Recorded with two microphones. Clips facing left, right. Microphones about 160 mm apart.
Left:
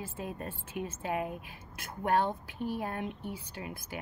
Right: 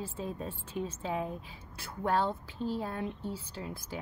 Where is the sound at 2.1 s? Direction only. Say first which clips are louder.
Left 1 dB; 15° left (ahead or behind).